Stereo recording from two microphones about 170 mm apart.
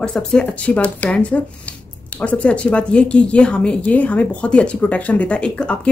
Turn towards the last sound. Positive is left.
turn(degrees=5)  # may be behind; listen again after turning